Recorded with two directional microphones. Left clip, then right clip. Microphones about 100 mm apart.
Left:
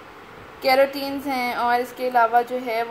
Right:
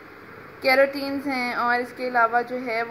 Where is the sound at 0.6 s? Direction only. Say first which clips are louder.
Left 1 dB; 25° left (ahead or behind).